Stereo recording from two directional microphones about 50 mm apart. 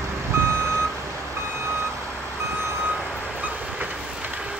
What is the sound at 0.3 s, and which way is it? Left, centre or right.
Reversing beeps, right.